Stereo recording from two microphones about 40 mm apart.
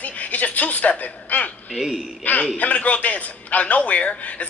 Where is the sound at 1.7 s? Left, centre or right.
Centre.